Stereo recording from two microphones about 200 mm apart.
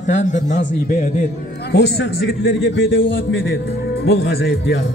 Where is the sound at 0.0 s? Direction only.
35° left (ahead or behind).